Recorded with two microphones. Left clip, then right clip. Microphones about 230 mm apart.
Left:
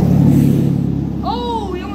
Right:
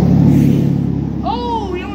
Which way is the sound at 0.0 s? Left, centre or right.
Left.